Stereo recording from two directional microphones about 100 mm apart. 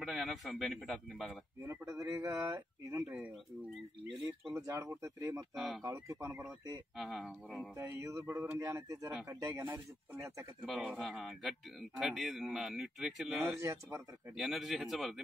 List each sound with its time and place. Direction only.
0.0 s a man's voice: centre (ahead or behind)
1.6 s speech: 30° right (ahead or behind)
4.6 s speech: 30° right (ahead or behind)
5.5 s speech: centre (ahead or behind)
6.0 s mantra: 25° right (ahead or behind)
7.0 s speech: 5° right (ahead or behind)
7.7 s mantra: 30° right (ahead or behind)
8.5 s speech: 30° right (ahead or behind)
10.9 s speech: centre (ahead or behind)
13.6 s speech: 30° right (ahead or behind)
14.3 s speech: 5° right (ahead or behind)